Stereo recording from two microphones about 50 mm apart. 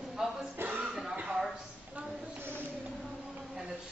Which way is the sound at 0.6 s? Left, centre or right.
Right.